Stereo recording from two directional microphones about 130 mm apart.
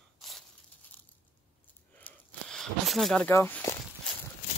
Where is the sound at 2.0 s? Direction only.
10° left (ahead or behind).